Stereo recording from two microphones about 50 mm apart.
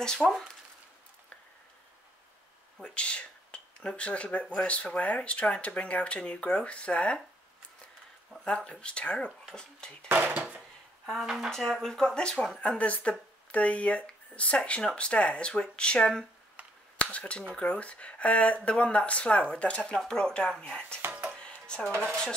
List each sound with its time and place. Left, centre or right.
0.2 s speech: centre
2.8 s speech: left
8.5 s speech: left
10.0 s speech: right
11.1 s speech: centre
11.8 s speech: centre
17.0 s speech: left
21.4 s music: centre